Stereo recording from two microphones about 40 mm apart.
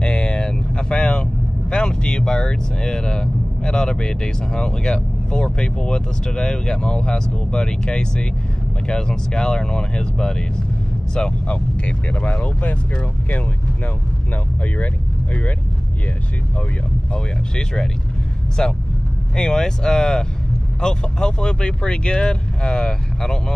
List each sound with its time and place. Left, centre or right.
0.0 s speech: left
14.3 s speech: left
17.1 s speech: centre